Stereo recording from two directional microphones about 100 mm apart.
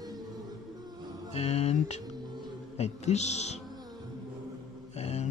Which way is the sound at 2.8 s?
90° left.